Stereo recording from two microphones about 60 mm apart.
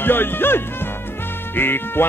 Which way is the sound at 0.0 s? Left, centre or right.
Left.